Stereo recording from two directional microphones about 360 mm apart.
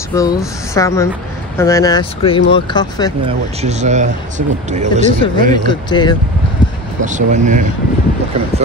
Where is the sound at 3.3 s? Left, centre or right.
Centre.